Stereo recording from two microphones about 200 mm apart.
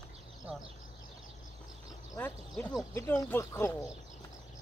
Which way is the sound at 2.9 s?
15° left (ahead or behind).